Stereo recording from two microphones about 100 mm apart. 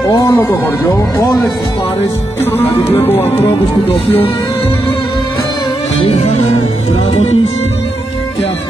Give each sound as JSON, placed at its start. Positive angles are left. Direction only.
{"t": 0.1, "sound": "speech", "side_deg": 30}
{"t": 2.5, "sound": "speech", "side_deg": 25}
{"t": 6.0, "sound": "music", "side_deg": 80}